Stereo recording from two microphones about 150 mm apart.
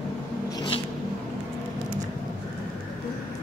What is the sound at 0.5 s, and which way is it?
Zipper, 30° left (ahead or behind).